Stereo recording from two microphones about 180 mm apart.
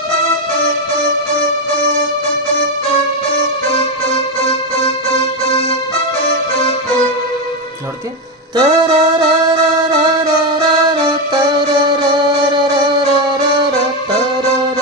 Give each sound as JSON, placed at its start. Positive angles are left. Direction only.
{"t": 8.5, "sound": "music", "side_deg": -25}